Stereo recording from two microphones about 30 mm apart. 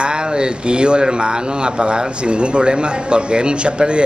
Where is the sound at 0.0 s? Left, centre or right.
Right.